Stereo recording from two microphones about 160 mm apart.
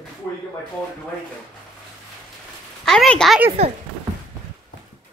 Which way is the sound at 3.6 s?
40° right (ahead or behind).